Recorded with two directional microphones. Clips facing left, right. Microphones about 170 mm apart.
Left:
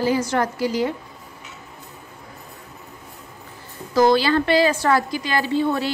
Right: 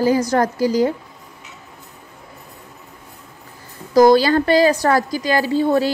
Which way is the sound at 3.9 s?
40° right (ahead or behind).